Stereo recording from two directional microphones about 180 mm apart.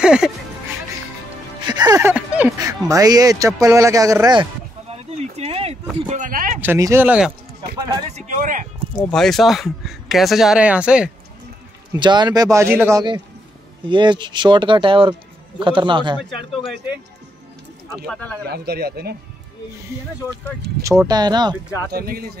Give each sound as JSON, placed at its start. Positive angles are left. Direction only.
{"t": 0.0, "sound": "speech", "side_deg": -5}
{"t": 1.7, "sound": "speech", "side_deg": -20}
{"t": 2.1, "sound": "speech", "side_deg": -10}
{"t": 4.8, "sound": "speech", "side_deg": -35}
{"t": 6.6, "sound": "speech", "side_deg": -15}
{"t": 8.1, "sound": "speech", "side_deg": -40}
{"t": 9.0, "sound": "speech", "side_deg": 5}
{"t": 11.9, "sound": "speech", "side_deg": -25}
{"t": 13.8, "sound": "speech", "side_deg": -25}
{"t": 18.0, "sound": "speech", "side_deg": 5}
{"t": 18.4, "sound": "speech", "side_deg": -60}
{"t": 21.1, "sound": "speech", "side_deg": -20}
{"t": 21.9, "sound": "speech", "side_deg": -55}